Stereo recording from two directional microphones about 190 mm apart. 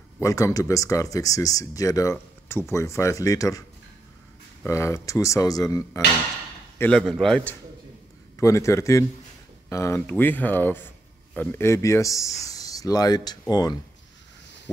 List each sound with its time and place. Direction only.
0.2 s speech: 15° left (ahead or behind)
4.6 s speech: 15° left (ahead or behind)
6.8 s a man's voice: 5° left (ahead or behind)
8.4 s speech: 15° left (ahead or behind)